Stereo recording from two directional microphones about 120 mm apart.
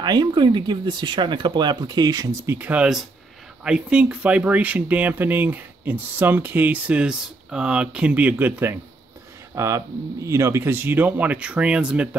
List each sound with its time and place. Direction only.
0.0 s speech: 35° right (ahead or behind)
2.4 s speech: 15° right (ahead or behind)